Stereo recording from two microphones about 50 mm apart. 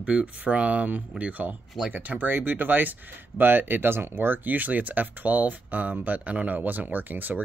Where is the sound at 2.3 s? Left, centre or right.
Right.